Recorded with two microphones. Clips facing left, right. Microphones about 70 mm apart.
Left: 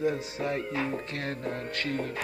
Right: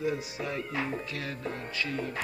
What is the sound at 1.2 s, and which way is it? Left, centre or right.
Music, left.